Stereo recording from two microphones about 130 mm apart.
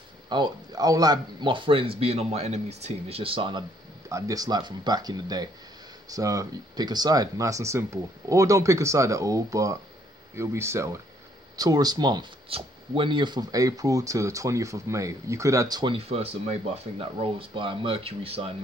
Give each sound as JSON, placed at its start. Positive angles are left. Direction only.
{"t": 0.3, "sound": "speech", "side_deg": -30}
{"t": 4.1, "sound": "speech", "side_deg": -30}
{"t": 16.1, "sound": "speech", "side_deg": -50}